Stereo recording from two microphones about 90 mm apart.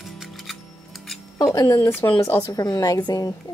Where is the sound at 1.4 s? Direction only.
35° left (ahead or behind).